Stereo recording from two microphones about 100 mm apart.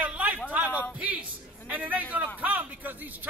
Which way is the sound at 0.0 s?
15° right (ahead or behind).